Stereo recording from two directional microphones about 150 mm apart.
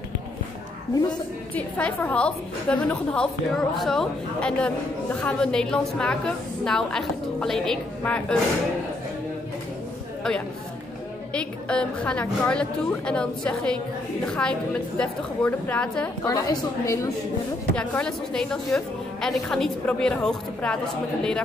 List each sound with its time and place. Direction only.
1.5 s a woman's voice: 10° left (ahead or behind)
11.3 s a woman's voice: 5° left (ahead or behind)
16.3 s a woman's voice: 25° left (ahead or behind)
17.7 s a woman's voice: 5° left (ahead or behind)